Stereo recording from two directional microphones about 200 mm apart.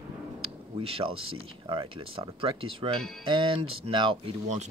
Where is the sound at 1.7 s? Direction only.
25° right (ahead or behind).